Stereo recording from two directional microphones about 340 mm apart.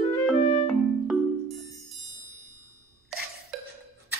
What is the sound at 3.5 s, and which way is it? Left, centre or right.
Clock, centre.